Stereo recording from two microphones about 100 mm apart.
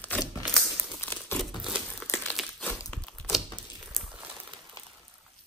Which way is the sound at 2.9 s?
10° left (ahead or behind).